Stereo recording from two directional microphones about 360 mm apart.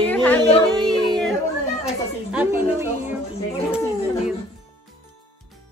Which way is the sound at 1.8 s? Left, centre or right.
Centre.